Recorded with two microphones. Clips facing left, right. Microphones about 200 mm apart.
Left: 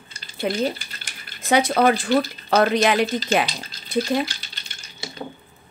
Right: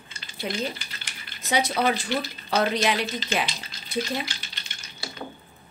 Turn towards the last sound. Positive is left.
turn(degrees=20)  # may be behind; listen again after turning